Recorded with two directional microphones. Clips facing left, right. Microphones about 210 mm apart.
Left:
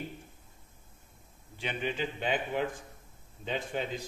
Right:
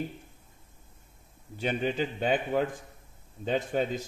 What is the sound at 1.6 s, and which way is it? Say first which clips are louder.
A man's voice: right 5 dB; 40° right (ahead or behind).